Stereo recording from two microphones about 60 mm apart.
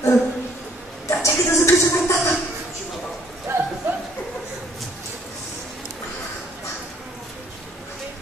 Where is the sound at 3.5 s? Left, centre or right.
Right.